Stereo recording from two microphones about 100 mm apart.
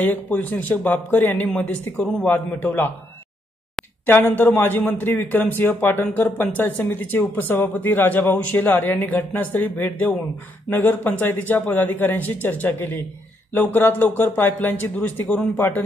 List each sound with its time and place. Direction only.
0.0 s speech: 15° left (ahead or behind)
2.0 s speech: 5° left (ahead or behind)
4.0 s a man's voice: 20° left (ahead or behind)